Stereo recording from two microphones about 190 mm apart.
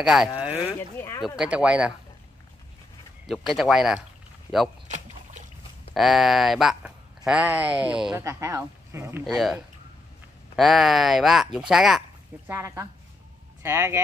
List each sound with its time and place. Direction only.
0.0 s speech: centre (ahead or behind)
0.4 s boat: 5° right (ahead or behind)
0.7 s a sound: 15° left (ahead or behind)
1.2 s speech: 5° right (ahead or behind)
3.3 s speech: centre (ahead or behind)
4.8 s rowboat: 40° right (ahead or behind)
5.9 s speech: centre (ahead or behind)
9.2 s speech: centre (ahead or behind)
12.4 s speech: 15° right (ahead or behind)